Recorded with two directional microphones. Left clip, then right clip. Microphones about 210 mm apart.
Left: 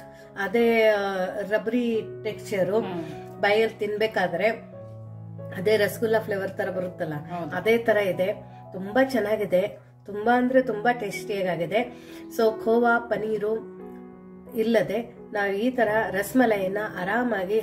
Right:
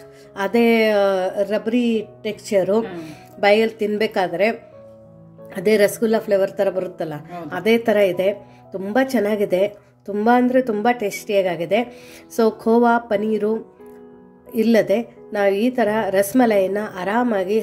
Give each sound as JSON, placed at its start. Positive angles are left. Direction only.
{"t": 0.4, "sound": "a woman's voice", "side_deg": -40}
{"t": 14.6, "sound": "a woman's voice", "side_deg": -40}